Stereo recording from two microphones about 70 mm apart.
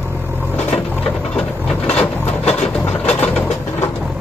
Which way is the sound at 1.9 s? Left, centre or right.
Centre.